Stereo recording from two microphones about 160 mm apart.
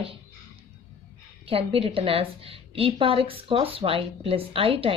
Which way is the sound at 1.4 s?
35° right (ahead or behind).